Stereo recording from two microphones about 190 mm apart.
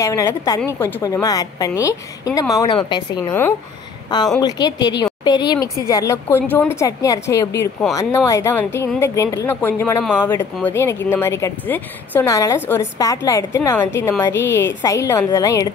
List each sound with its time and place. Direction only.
0.0 s speech: 15° left (ahead or behind)
4.4 s a woman's voice: 20° left (ahead or behind)